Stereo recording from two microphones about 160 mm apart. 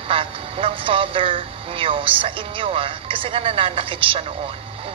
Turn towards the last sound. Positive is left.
turn(degrees=-35)  # may be behind; listen again after turning